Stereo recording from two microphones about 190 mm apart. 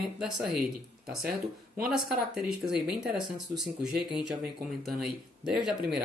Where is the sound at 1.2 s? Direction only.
50° right (ahead or behind).